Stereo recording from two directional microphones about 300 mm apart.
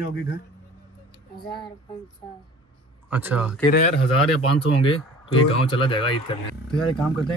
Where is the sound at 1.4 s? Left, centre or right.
Centre.